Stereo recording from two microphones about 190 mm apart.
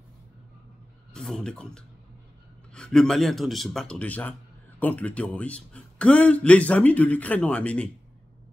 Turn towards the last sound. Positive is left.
turn(degrees=5)  # may be behind; listen again after turning